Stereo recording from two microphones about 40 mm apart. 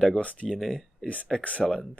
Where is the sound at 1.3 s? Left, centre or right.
Centre.